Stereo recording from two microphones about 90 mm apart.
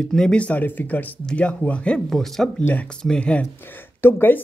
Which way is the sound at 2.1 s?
5° left (ahead or behind).